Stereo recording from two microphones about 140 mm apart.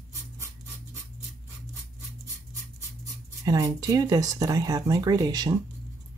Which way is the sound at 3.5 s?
25° right (ahead or behind).